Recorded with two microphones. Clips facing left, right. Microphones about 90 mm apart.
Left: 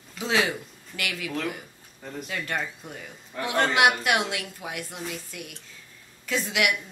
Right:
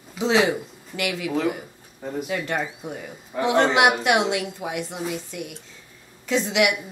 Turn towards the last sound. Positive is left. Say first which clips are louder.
# right 5 dB
turn(degrees=-15)  # may be behind; listen again after turning